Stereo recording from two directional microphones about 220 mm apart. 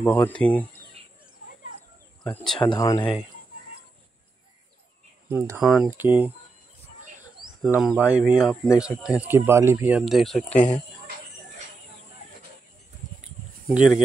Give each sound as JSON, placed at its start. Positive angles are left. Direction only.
{"t": 0.0, "sound": "speech", "side_deg": 10}
{"t": 2.2, "sound": "speech", "side_deg": 0}
{"t": 2.6, "sound": "speech", "side_deg": 20}
{"t": 5.6, "sound": "speech", "side_deg": 0}
{"t": 7.8, "sound": "speech", "side_deg": -5}
{"t": 13.7, "sound": "speech", "side_deg": -5}